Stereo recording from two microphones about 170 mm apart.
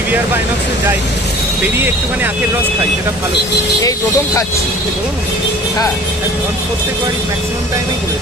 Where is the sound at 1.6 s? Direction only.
10° right (ahead or behind).